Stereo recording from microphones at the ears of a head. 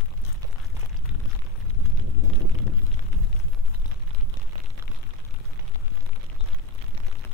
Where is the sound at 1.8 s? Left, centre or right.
Right.